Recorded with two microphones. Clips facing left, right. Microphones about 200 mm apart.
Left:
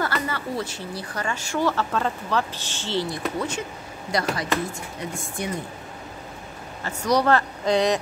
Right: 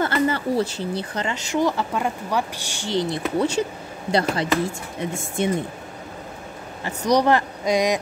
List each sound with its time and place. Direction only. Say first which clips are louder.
0.0 s speech: right 6 dB; 30° right (ahead or behind)
3.3 s a woman's voice: right 7 dB; 30° right (ahead or behind)
6.8 s a woman's voice: right 3 dB; 15° right (ahead or behind)